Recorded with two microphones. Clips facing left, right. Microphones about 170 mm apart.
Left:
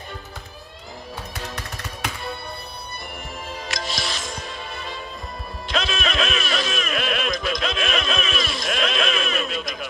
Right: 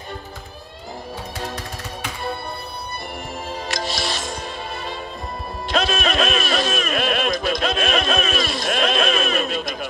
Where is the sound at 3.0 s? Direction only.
35° right (ahead or behind).